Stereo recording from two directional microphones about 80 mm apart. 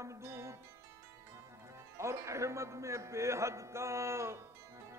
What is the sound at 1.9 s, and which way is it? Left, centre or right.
Music, right.